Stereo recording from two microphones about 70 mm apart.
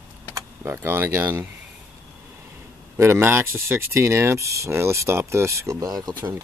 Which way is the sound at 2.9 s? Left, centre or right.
Right.